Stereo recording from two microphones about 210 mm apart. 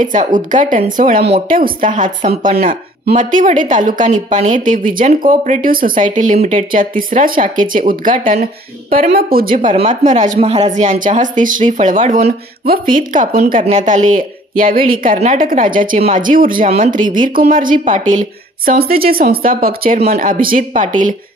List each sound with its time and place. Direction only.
0.0 s a woman's voice: 40° right (ahead or behind)